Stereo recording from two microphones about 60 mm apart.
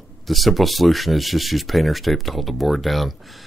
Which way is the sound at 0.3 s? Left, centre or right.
Centre.